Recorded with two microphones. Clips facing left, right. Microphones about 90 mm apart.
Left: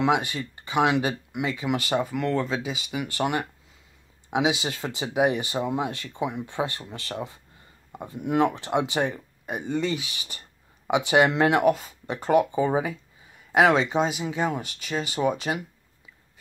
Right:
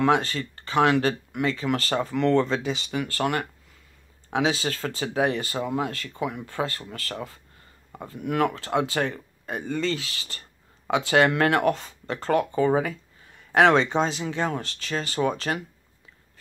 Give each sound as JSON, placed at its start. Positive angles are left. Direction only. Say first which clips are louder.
{"t": 0.0, "sound": "speech", "louder": "right 2 dB", "side_deg": 15}
{"t": 3.1, "sound": "speech", "louder": "left 1 dB", "side_deg": 15}